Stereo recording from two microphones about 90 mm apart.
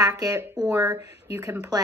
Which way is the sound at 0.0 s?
40° right (ahead or behind).